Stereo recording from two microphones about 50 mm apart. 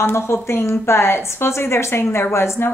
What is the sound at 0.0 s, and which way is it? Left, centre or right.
A woman's voice, left.